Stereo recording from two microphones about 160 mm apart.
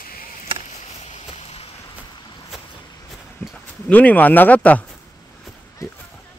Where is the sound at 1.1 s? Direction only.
40° left (ahead or behind).